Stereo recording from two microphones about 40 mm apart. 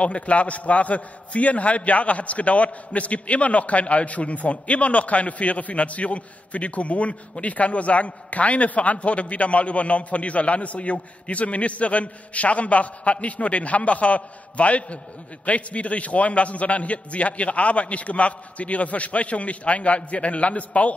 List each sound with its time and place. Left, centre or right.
0.0 s a man's voice: left